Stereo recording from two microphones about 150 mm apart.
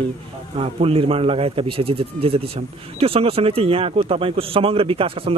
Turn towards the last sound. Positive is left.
turn(degrees=-40)  # may be behind; listen again after turning